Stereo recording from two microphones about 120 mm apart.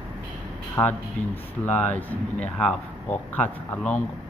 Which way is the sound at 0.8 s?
20° left (ahead or behind).